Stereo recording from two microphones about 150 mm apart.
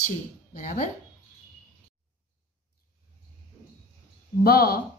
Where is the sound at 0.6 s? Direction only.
55° left (ahead or behind).